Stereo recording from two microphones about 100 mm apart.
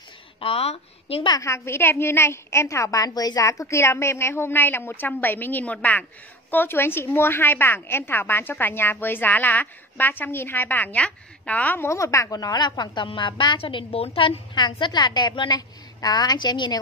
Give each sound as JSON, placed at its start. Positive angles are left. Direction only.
{"t": 0.4, "sound": "a woman's voice", "side_deg": 80}
{"t": 1.4, "sound": "a woman's voice", "side_deg": 25}